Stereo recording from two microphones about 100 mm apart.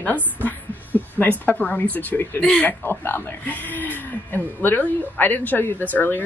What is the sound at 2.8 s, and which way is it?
Speech, 20° left (ahead or behind).